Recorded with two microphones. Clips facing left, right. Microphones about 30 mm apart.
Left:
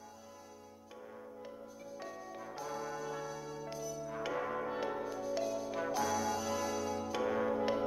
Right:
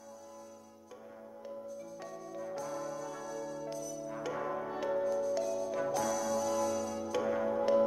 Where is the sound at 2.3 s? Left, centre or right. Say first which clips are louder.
Right 4 dB; centre.